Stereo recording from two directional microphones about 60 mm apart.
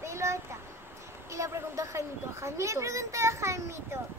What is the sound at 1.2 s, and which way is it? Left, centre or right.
A child's voice, right.